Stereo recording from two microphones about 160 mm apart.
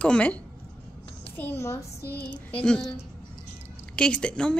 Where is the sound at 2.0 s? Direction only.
80° left.